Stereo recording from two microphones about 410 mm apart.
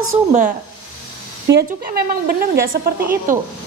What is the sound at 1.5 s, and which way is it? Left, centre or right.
A woman's voice, right.